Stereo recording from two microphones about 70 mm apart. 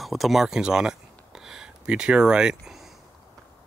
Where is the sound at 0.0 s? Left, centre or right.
Centre.